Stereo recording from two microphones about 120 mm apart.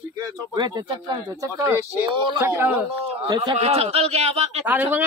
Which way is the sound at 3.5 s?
60° right (ahead or behind).